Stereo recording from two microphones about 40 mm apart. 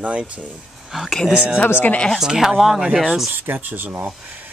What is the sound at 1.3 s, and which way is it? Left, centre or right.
Speech, right.